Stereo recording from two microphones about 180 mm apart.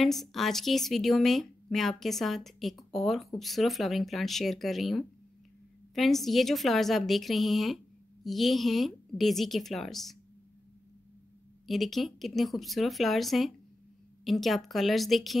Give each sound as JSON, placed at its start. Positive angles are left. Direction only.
{"t": 0.0, "sound": "a woman's voice", "side_deg": 0}
{"t": 11.6, "sound": "a woman's voice", "side_deg": 0}